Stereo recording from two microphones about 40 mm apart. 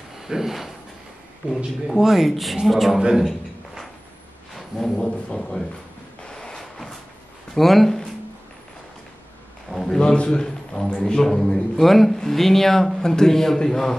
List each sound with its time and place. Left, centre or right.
0.2 s speech: centre
2.0 s speech: centre
3.2 s a sound: centre
4.6 s a sound: centre
5.3 s speech: centre
6.2 s a sound: centre
6.6 s cupboard open or close: centre
7.5 s speech: centre
9.9 s a man's voice: left